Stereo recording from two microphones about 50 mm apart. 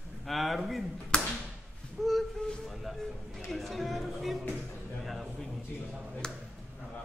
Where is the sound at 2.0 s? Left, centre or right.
Centre.